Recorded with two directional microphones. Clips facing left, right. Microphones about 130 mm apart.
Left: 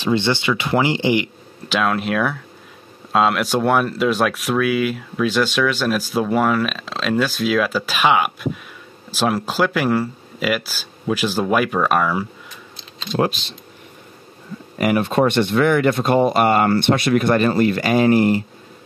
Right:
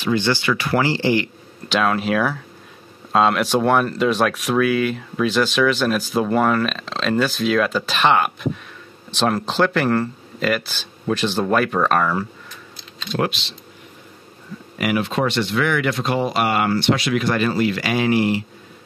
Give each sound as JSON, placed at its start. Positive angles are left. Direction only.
{"t": 0.0, "sound": "speech", "side_deg": 25}
{"t": 1.7, "sound": "speech", "side_deg": 0}
{"t": 14.8, "sound": "speech", "side_deg": 45}